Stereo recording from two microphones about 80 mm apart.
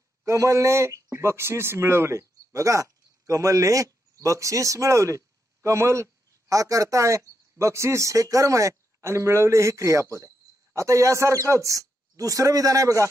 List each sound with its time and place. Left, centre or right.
0.2 s speech: right